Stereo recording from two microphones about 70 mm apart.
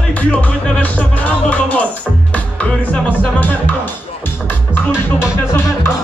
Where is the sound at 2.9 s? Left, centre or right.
Left.